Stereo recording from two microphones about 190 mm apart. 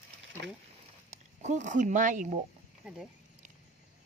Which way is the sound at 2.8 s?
5° right (ahead or behind).